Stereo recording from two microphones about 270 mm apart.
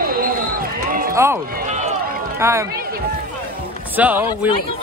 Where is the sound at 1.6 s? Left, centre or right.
Right.